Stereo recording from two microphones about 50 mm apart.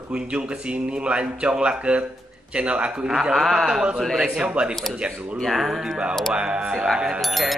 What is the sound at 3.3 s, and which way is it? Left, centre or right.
Speech, centre.